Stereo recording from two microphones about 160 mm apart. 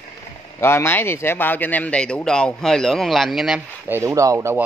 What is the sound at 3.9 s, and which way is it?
Speech, 20° right (ahead or behind).